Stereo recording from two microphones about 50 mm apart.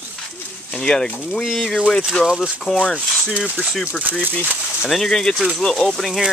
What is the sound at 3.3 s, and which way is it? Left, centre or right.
Speech, right.